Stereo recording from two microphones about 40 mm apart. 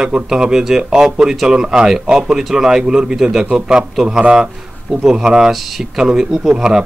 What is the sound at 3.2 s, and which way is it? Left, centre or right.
Speech, centre.